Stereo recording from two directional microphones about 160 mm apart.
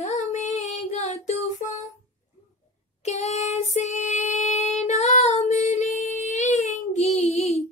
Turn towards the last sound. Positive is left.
turn(degrees=45)  # may be behind; listen again after turning